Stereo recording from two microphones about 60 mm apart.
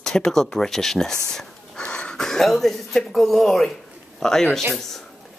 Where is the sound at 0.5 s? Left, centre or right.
Centre.